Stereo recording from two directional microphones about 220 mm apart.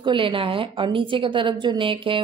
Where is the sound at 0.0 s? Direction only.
25° right (ahead or behind).